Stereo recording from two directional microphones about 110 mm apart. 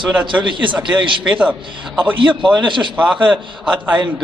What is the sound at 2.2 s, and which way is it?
Speech, 50° right (ahead or behind).